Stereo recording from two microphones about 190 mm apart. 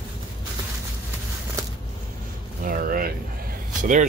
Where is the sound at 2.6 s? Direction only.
50° right (ahead or behind).